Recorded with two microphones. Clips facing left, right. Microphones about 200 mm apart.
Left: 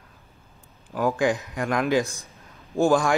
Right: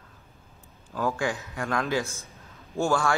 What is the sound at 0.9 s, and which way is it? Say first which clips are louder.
Speech: left 5 dB; 15° left (ahead or behind).